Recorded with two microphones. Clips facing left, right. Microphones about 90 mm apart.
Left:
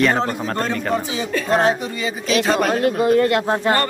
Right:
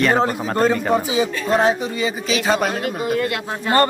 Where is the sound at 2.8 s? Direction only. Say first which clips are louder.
Left 6 dB; 40° left (ahead or behind).